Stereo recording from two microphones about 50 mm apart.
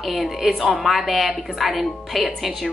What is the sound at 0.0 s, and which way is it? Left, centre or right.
A woman's voice, centre.